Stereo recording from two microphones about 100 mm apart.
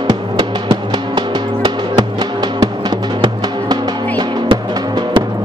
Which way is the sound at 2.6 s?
45° right (ahead or behind).